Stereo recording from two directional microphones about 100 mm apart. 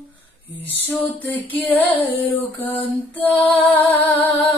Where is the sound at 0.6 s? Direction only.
15° left (ahead or behind).